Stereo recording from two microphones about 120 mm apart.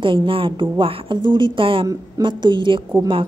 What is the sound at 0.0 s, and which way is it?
A woman's voice, 45° right (ahead or behind).